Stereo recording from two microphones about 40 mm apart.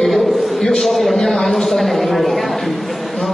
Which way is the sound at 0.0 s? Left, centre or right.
Centre.